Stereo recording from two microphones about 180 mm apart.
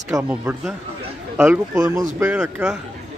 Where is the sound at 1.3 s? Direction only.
10° right (ahead or behind).